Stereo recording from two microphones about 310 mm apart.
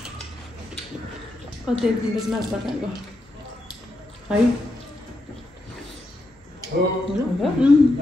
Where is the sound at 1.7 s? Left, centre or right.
Centre.